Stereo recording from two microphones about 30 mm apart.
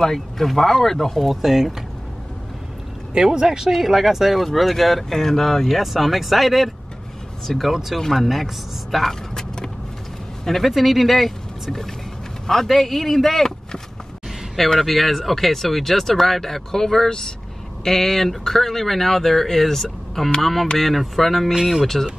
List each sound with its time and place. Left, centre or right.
0.0 s speech: centre
1.3 s speech: centre
3.2 s speech: centre
3.7 s speech: centre
4.5 s speech: centre
5.8 s speech: centre
9.3 s vehicle: centre
10.4 s speech: centre
10.7 s speech: centre
12.4 s speech: centre
14.8 s speech: centre